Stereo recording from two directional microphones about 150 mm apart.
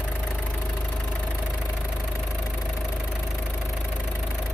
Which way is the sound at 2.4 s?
Centre (ahead or behind).